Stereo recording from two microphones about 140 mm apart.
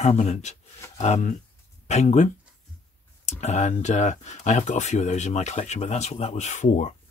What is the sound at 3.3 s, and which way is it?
Speech, 55° left (ahead or behind).